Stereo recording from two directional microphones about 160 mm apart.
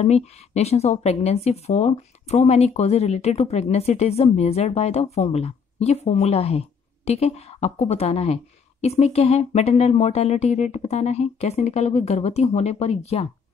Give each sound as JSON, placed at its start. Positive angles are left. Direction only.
{"t": 0.0, "sound": "speech", "side_deg": 40}